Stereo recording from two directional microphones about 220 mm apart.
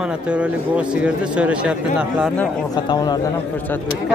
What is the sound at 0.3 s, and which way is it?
A man's voice, 5° right (ahead or behind).